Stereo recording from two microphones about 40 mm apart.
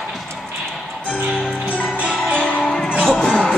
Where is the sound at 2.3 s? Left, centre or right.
Centre.